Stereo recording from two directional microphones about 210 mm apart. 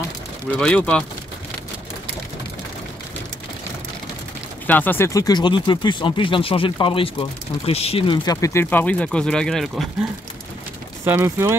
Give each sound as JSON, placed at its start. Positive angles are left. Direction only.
{"t": 0.6, "sound": "speech", "side_deg": 5}
{"t": 4.6, "sound": "speech", "side_deg": 10}
{"t": 11.1, "sound": "speech", "side_deg": -10}